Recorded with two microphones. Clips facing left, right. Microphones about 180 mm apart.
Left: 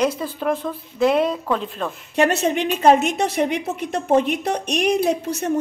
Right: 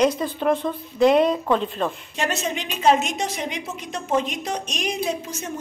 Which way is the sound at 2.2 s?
60° left (ahead or behind).